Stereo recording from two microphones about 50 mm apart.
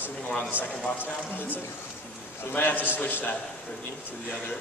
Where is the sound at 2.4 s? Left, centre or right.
Left.